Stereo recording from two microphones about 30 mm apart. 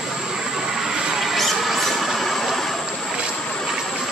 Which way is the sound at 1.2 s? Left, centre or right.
Centre.